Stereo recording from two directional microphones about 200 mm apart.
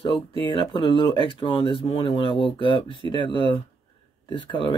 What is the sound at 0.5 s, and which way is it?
Speech, 25° left (ahead or behind).